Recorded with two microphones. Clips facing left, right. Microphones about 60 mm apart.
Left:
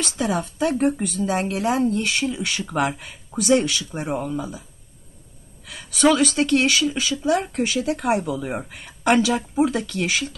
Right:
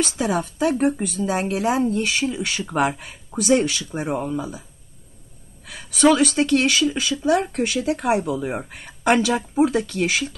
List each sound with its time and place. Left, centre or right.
0.4 s speech: centre
5.8 s speech: centre
8.3 s speech: centre
10.0 s speech: centre